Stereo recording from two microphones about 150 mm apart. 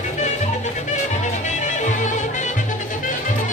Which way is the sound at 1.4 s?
55° left (ahead or behind).